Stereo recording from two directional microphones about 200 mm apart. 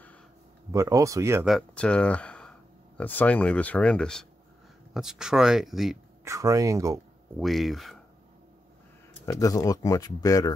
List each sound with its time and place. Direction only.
0.7 s speech: 15° right (ahead or behind)
1.5 s speech: 5° left (ahead or behind)
6.2 s speech: 15° right (ahead or behind)
7.3 s speech: centre (ahead or behind)
9.2 s speech: 15° left (ahead or behind)